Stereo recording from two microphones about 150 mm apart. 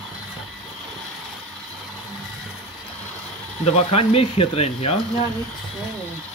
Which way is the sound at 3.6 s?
40° left (ahead or behind).